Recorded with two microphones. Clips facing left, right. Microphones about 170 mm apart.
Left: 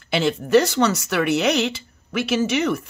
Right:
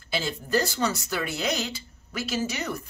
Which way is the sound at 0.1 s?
70° left (ahead or behind).